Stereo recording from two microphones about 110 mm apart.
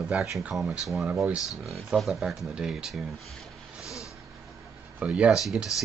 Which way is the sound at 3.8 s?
30° left (ahead or behind).